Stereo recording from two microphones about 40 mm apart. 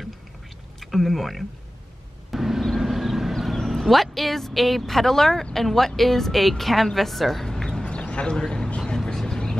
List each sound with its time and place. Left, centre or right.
0.7 s speech: centre
2.3 s vehicle: centre
3.6 s speech: centre
7.4 s a sound: centre
8.0 s a man's voice: left
8.8 s vehicle: centre